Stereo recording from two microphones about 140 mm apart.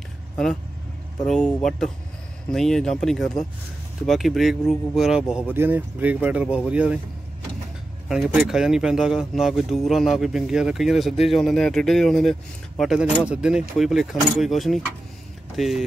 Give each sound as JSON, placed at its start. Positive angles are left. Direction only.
{"t": 1.2, "sound": "speech", "side_deg": 5}
{"t": 5.5, "sound": "speech", "side_deg": -15}
{"t": 8.1, "sound": "speech", "side_deg": -5}